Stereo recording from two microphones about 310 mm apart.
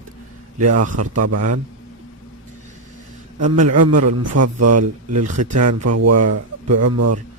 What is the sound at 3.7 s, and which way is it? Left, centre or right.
A man's voice, right.